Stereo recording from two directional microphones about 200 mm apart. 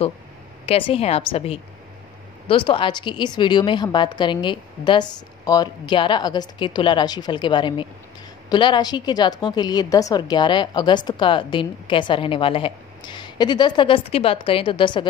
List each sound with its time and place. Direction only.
0.7 s a woman's voice: 30° left (ahead or behind)